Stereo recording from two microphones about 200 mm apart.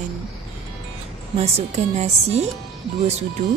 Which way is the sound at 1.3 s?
30° right (ahead or behind).